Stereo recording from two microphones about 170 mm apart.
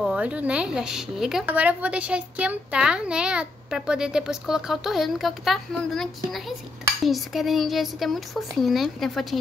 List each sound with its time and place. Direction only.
0.0 s a woman's voice: 5° right (ahead or behind)